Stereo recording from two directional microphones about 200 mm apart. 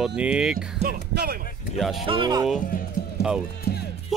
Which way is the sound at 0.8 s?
50° right (ahead or behind).